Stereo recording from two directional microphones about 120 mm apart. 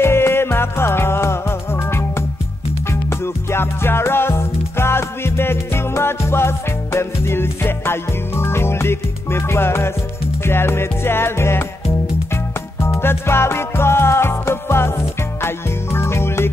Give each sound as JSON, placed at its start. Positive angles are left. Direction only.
{"t": 0.0, "sound": "music", "side_deg": 20}
{"t": 12.8, "sound": "music", "side_deg": 20}